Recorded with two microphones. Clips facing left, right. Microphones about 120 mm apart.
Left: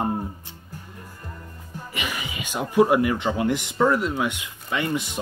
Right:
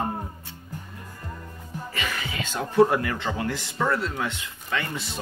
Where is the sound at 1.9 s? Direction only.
15° left (ahead or behind).